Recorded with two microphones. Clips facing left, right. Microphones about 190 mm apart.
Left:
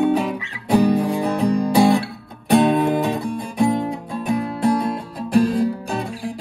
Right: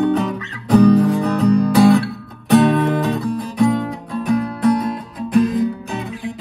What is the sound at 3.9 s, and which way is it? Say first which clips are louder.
Music: right 3 dB; centre (ahead or behind).